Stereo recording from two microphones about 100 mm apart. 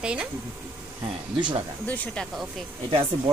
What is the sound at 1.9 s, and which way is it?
Speech, 15° left (ahead or behind).